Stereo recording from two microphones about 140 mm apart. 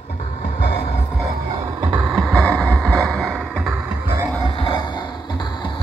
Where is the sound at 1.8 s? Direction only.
5° right (ahead or behind).